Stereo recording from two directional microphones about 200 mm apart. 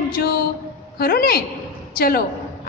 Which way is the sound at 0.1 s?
50° left (ahead or behind).